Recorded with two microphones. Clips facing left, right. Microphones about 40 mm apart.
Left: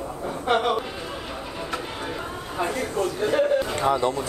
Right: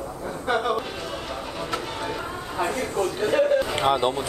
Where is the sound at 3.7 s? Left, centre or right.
Right.